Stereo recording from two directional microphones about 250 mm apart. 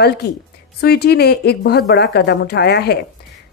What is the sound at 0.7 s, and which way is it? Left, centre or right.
A woman's voice, left.